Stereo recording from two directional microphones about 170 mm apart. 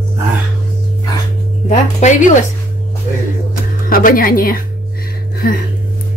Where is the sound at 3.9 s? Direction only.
55° left (ahead or behind).